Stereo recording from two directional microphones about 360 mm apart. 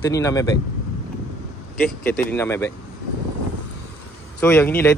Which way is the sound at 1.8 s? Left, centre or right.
Centre.